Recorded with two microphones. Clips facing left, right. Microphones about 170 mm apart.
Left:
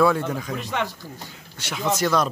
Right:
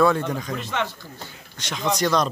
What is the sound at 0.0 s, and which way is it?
Speech, 5° left (ahead or behind).